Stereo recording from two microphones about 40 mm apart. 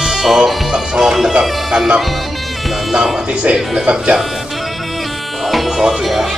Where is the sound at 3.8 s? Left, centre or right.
Right.